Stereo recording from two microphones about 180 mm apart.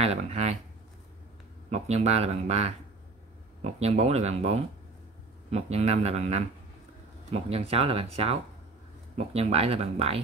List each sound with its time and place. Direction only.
0.0 s speech: 35° right (ahead or behind)
1.7 s speech: 35° right (ahead or behind)